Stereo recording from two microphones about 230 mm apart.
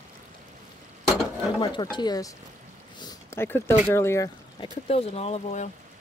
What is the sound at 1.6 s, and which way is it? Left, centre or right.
Speech, centre.